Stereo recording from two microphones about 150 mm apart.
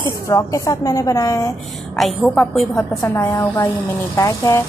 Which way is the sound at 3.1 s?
20° left (ahead or behind).